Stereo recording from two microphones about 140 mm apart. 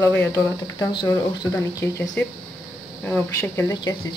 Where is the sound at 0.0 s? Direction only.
15° left (ahead or behind).